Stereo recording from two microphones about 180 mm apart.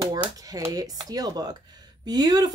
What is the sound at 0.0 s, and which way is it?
A woman's voice, 20° right (ahead or behind).